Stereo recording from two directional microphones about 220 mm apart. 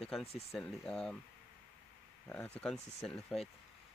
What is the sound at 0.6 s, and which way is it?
Speech, 5° left (ahead or behind).